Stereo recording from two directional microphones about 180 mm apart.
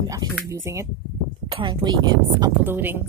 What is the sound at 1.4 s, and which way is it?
A woman's voice, 25° right (ahead or behind).